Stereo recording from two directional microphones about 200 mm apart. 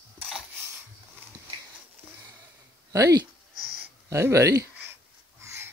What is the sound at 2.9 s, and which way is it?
Speech, 15° right (ahead or behind).